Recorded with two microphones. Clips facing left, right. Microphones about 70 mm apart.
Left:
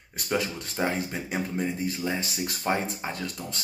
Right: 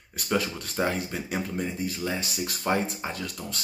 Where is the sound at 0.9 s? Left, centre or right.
Left.